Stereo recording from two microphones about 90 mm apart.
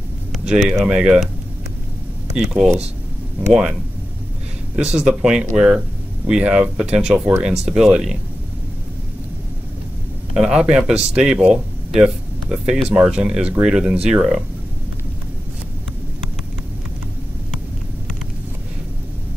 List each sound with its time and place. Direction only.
0.6 s speech: 5° left (ahead or behind)
0.8 s speech: 10° right (ahead or behind)
2.3 s speech: 5° right (ahead or behind)
3.4 s speech: 15° right (ahead or behind)
4.7 s speech: 10° right (ahead or behind)
10.3 s speech: 10° right (ahead or behind)